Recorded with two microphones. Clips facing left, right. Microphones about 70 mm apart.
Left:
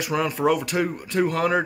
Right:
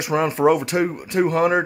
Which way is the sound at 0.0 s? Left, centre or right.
Right.